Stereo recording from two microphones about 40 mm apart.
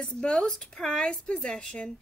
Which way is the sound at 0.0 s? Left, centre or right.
Centre.